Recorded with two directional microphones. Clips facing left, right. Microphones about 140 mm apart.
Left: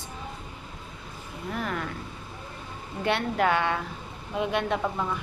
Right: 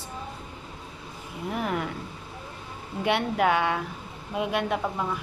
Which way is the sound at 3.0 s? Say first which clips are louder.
Right 1 dB; 10° right (ahead or behind).